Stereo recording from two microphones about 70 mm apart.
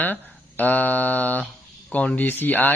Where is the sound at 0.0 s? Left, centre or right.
Left.